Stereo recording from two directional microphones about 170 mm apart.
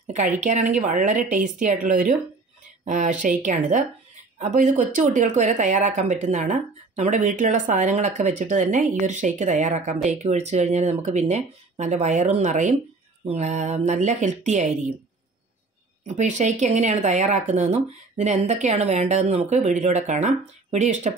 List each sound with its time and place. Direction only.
0.0 s speech: 45° right (ahead or behind)
16.2 s speech: 45° right (ahead or behind)